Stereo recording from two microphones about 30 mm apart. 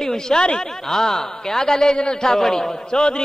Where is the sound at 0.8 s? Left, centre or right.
Centre.